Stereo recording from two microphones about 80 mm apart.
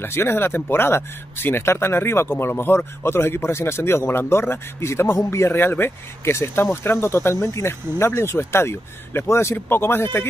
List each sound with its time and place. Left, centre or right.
0.0 s speech: left